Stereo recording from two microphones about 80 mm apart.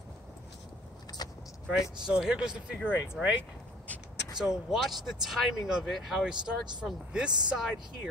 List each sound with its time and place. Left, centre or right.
1.2 s keys jangling: left
1.7 s speech: centre
4.4 s speech: centre